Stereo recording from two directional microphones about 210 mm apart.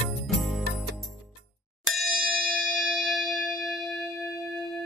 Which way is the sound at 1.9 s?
Centre (ahead or behind).